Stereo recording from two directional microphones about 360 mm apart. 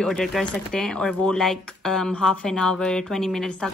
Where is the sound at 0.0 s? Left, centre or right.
Centre.